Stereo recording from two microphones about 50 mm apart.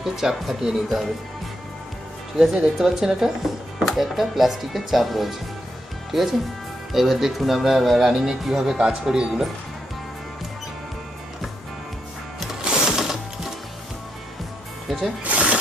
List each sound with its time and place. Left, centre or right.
0.0 s speech: centre
2.5 s speech: centre
12.6 s sewing machine: centre
14.9 s music: centre
15.2 s music: right